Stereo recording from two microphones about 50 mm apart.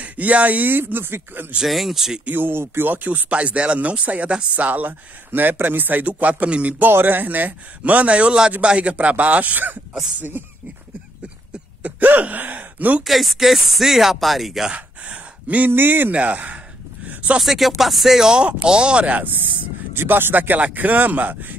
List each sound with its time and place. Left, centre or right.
0.0 s a man's voice: right
1.6 s speech: centre
2.3 s speech: right
2.9 s a man's voice: right
6.9 s a man's voice: right
11.8 s speech: right
13.0 s speech: centre
14.7 s speech: right
15.7 s speech: right
16.1 s speech: right
17.4 s speech: centre
18.7 s a man's voice: right